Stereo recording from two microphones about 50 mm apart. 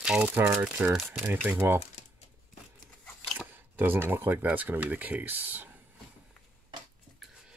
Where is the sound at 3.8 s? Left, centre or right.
Right.